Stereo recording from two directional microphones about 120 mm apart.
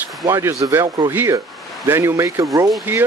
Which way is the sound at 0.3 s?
25° right (ahead or behind).